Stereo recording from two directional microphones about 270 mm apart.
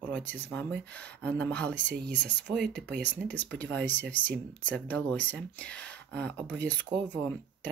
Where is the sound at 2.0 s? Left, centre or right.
Right.